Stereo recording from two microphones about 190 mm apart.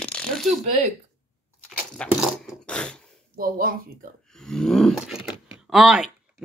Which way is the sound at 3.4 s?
50° right (ahead or behind).